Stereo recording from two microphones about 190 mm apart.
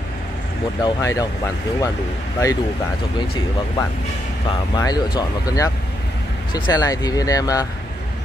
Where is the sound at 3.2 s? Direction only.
25° left (ahead or behind).